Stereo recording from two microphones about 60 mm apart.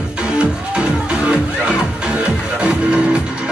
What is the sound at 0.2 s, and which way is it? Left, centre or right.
Music, centre.